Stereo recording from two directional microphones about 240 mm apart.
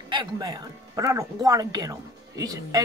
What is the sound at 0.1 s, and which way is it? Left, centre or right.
Speech, centre.